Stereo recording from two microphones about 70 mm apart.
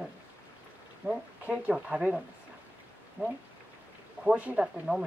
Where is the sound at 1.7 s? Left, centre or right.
Centre.